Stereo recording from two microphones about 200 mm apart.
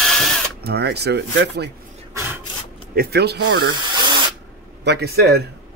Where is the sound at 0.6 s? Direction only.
55° right (ahead or behind).